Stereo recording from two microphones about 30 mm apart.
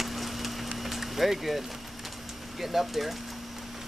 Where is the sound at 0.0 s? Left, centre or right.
Centre.